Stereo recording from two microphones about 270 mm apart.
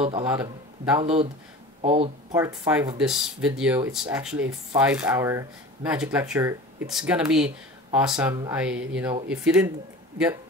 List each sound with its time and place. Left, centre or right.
0.2 s speech: centre
1.0 s speech: right
2.3 s speech: centre